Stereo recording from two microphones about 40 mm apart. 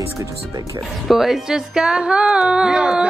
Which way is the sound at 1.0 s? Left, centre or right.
Centre.